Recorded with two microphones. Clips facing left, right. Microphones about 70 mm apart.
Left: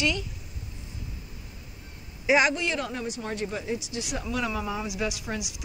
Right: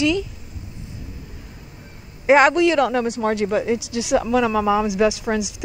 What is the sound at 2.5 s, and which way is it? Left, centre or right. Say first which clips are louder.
Speech: right 13 dB; right.